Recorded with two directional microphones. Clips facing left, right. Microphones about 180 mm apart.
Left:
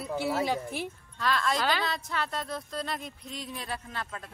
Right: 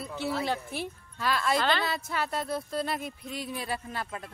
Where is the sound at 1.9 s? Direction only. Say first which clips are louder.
Right 1 dB; 5° right (ahead or behind).